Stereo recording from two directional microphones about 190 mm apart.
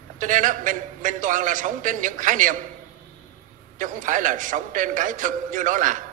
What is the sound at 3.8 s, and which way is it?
A man's voice, 45° right (ahead or behind).